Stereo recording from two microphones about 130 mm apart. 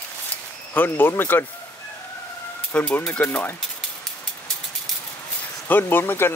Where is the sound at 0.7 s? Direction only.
15° left (ahead or behind).